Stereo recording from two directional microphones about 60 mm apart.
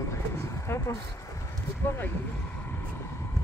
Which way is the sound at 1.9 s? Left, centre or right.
Left.